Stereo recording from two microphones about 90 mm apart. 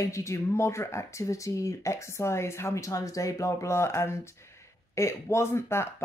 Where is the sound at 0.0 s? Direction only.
35° left (ahead or behind).